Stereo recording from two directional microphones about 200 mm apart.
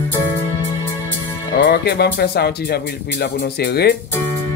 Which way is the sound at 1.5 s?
55° left (ahead or behind).